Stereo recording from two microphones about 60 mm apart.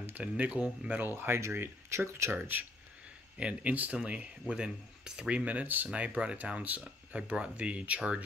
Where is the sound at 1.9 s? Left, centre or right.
Right.